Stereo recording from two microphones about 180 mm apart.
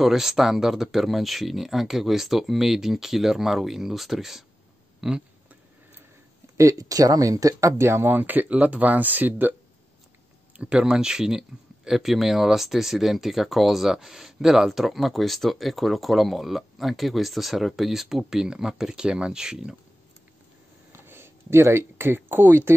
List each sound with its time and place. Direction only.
0.0 s speech: centre (ahead or behind)
6.5 s speech: 15° right (ahead or behind)
10.6 s speech: 5° right (ahead or behind)
21.0 s speech: 15° right (ahead or behind)